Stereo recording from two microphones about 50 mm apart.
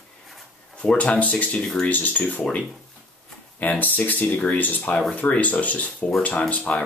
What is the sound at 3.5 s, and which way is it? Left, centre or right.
Speech, left.